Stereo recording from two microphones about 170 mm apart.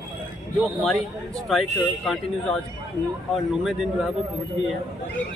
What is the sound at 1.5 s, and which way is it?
Speech, centre (ahead or behind).